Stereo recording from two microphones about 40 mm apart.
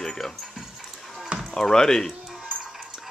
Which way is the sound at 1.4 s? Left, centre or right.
Centre.